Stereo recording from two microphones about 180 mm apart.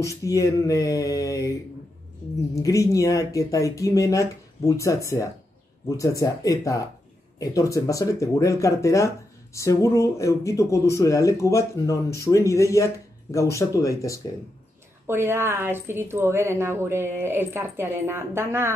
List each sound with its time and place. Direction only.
0.0 s speech: 15° left (ahead or behind)
2.5 s speech: 20° left (ahead or behind)
15.0 s a woman's voice: 15° right (ahead or behind)